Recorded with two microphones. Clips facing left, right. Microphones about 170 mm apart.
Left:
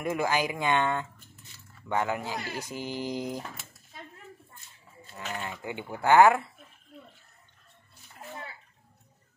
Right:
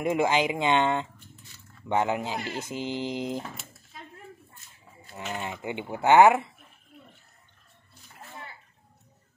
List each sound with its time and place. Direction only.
0.0 s speech: 20° right (ahead or behind)
5.1 s speech: 20° right (ahead or behind)